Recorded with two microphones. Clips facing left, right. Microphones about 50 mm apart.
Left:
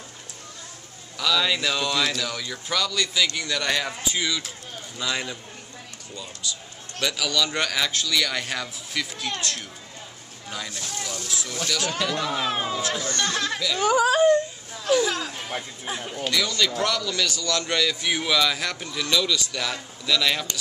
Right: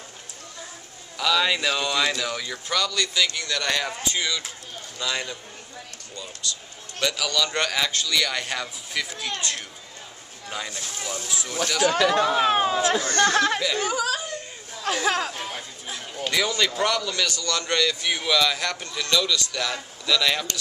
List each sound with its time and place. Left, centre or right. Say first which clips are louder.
1.1 s a man's voice: right 1 dB; centre
7.0 s a man's voice: even; centre
12.4 s speech: right 6 dB; right
12.9 s speech: right 6 dB; right
13.7 s speech: left 6 dB; left
14.9 s speech: left 1 dB; right
15.8 s speech: left 3 dB; left
16.3 s a man's voice: right 1 dB; centre